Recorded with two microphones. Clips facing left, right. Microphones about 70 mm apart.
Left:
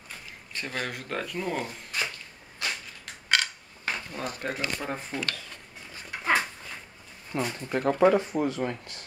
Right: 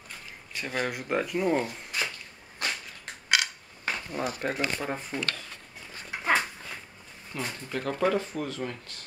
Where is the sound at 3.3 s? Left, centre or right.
Centre.